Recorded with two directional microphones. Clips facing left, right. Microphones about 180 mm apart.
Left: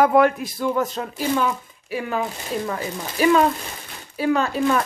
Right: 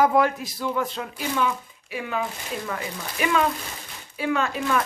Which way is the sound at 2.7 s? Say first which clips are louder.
Left 4 dB; 35° left (ahead or behind).